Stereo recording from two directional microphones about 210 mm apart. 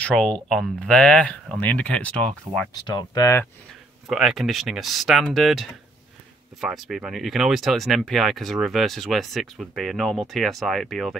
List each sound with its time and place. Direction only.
0.0 s speech: 5° left (ahead or behind)
2.7 s speech: 20° left (ahead or behind)
4.1 s speech: centre (ahead or behind)